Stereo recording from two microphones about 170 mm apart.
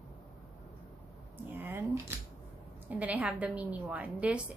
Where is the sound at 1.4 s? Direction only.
10° right (ahead or behind).